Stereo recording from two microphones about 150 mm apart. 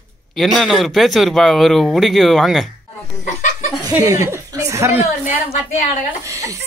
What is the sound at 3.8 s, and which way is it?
Speech, 20° right (ahead or behind).